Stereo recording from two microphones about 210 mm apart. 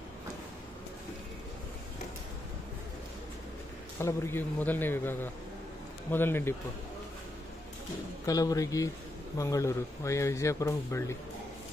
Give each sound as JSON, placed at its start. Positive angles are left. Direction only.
{"t": 4.0, "sound": "speech", "side_deg": 10}
{"t": 8.3, "sound": "speech", "side_deg": 15}